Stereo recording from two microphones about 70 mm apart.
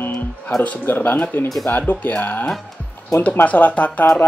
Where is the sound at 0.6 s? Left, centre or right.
Left.